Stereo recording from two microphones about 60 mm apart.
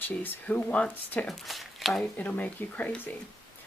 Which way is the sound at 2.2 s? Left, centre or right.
Left.